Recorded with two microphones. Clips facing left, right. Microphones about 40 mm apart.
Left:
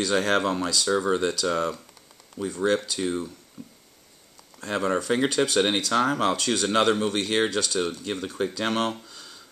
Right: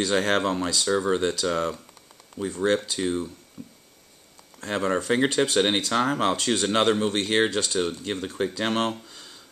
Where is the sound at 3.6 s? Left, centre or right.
Centre.